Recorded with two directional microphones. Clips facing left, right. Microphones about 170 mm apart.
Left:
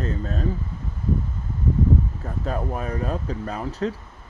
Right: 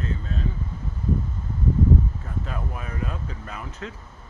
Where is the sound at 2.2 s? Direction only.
40° left (ahead or behind).